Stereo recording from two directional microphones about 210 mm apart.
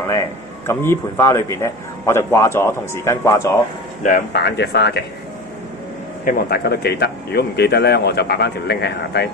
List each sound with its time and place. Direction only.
0.7 s a man's voice: 10° left (ahead or behind)
4.0 s speech: 40° left (ahead or behind)
4.4 s speech: 55° left (ahead or behind)
6.2 s speech: 50° left (ahead or behind)